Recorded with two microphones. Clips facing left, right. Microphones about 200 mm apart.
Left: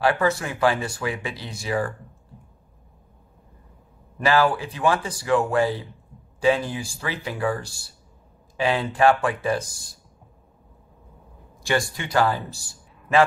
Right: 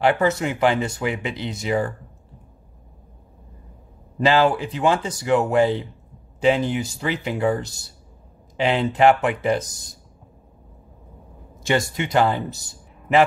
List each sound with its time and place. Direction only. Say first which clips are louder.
0.0 s speech: right 3 dB; 20° right (ahead or behind)
4.2 s speech: right 2 dB; 25° right (ahead or behind)
11.6 s a man's voice: right 3 dB; 20° right (ahead or behind)